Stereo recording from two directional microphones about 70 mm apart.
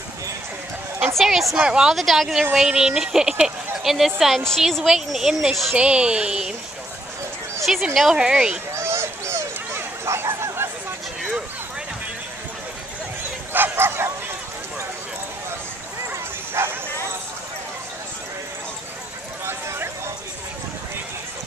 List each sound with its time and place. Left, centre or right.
1.1 s a woman's voice: centre
2.0 s a woman's voice: centre
5.8 s a woman's voice: centre
7.6 s a woman's voice: centre
8.7 s a sound: right
13.5 s bow-wow: right
16.1 s bow-wow: right
19.4 s a sound: right